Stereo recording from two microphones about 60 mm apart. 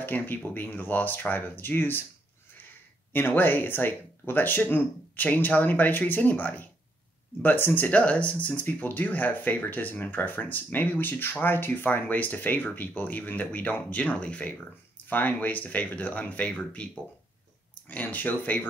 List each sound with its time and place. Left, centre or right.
0.0 s speech: left
3.1 s speech: left; by 16.9 s centre
18.0 s speech: left